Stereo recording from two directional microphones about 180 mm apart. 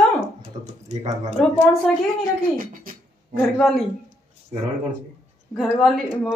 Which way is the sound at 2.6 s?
50° right (ahead or behind).